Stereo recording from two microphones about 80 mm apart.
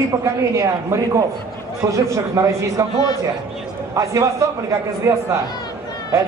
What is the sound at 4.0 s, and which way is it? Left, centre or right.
Speech, right.